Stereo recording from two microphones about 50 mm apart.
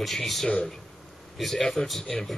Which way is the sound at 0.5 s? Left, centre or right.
Left.